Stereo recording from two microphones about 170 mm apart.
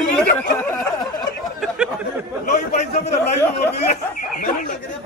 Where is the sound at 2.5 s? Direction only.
45° left (ahead or behind).